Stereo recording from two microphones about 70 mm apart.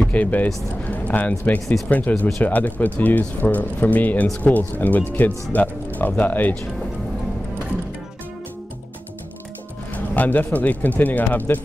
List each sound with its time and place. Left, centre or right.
0.0 s speech: left
9.9 s speech: left